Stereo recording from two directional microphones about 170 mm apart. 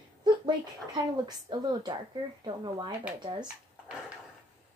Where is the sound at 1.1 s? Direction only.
25° right (ahead or behind).